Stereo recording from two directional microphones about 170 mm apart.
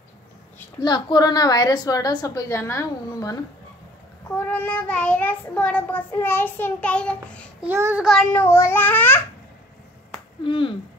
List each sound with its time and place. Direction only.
0.8 s a woman's voice: 25° left (ahead or behind)
4.5 s child singing: 10° left (ahead or behind)
7.6 s child singing: 10° right (ahead or behind); by 9.2 s 10° left (ahead or behind)
10.4 s a woman's voice: 30° left (ahead or behind)